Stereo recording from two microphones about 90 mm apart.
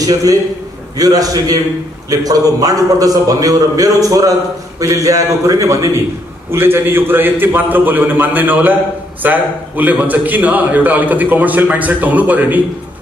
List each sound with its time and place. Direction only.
0.0 s a man's voice: 40° right (ahead or behind); by 12.6 s 20° right (ahead or behind)